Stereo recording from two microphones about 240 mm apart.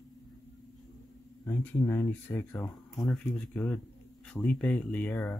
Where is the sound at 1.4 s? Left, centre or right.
Centre.